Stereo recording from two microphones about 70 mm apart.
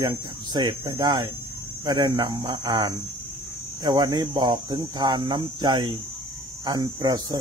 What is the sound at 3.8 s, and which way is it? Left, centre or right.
Speech, right.